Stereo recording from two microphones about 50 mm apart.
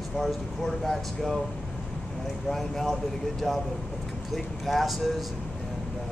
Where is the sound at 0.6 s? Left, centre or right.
Centre.